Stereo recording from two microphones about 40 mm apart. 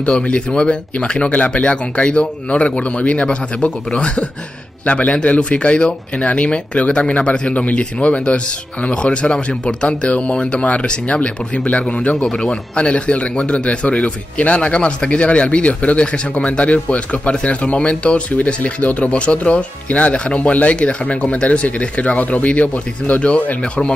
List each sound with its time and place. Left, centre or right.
0.0 s a man's voice: left
12.3 s a man's voice: centre
12.7 s a man's voice: left